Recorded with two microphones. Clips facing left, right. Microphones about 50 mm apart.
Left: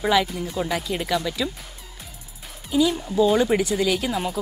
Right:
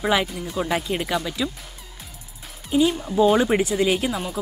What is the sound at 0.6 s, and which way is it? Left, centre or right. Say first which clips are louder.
Speech: right 3 dB; centre.